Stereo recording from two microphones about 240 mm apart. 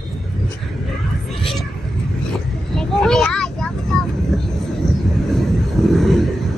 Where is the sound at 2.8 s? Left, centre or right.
Centre.